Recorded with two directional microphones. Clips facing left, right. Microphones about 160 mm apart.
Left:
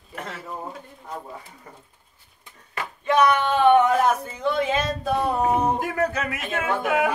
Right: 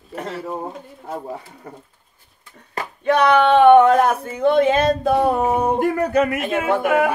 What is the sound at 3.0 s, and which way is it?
Speech, 65° right (ahead or behind).